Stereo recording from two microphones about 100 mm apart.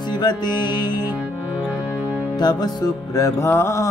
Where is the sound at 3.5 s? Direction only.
30° left (ahead or behind).